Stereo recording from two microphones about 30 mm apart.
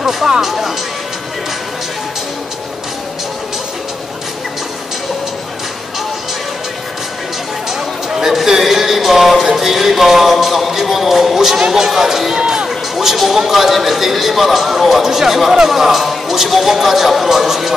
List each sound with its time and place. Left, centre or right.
0.0 s speech: centre
0.5 s speech: centre
8.1 s music: centre
10.3 s speech: centre
12.4 s a sound: right
12.9 s speech: centre